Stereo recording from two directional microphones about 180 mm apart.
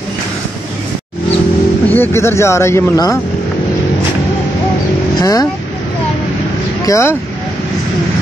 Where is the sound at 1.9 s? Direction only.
15° left (ahead or behind).